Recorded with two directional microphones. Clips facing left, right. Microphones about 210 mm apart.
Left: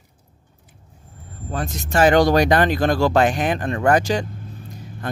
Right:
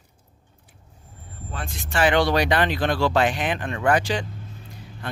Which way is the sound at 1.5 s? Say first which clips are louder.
Left 6 dB; 40° left (ahead or behind).